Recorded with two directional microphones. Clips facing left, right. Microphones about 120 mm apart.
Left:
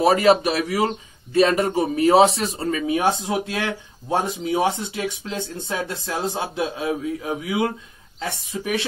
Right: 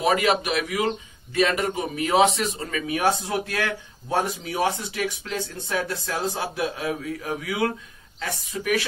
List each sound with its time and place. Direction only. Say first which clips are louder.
0.0 s a man's voice: left 5 dB; 35° left (ahead or behind)